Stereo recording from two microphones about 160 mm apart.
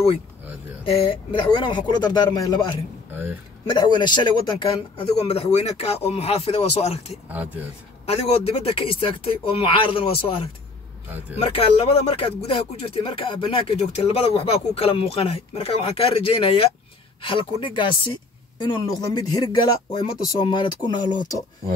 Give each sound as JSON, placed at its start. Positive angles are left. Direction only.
{"t": 0.8, "sound": "speech", "side_deg": 35}
{"t": 3.7, "sound": "speech", "side_deg": 30}